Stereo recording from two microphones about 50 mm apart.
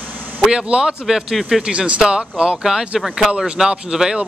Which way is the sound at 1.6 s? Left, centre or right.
Right.